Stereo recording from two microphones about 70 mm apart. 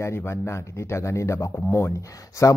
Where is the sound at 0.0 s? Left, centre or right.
Left.